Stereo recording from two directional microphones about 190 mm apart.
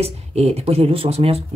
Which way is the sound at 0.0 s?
35° right (ahead or behind).